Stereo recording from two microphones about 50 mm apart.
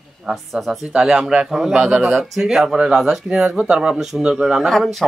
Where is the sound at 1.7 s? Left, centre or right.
Centre.